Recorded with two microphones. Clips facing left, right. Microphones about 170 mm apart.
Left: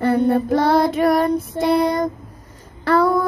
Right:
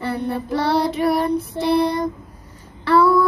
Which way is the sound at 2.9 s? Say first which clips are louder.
Right 1 dB; 45° left (ahead or behind).